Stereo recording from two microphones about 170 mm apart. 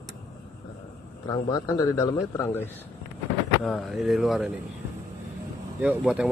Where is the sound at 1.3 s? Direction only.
20° left (ahead or behind).